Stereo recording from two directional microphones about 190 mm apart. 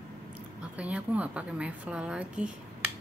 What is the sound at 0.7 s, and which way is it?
A woman's voice, 5° right (ahead or behind).